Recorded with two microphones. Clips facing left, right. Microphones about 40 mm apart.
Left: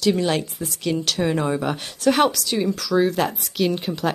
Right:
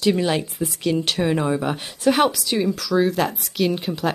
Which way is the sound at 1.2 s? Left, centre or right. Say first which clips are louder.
Even; centre.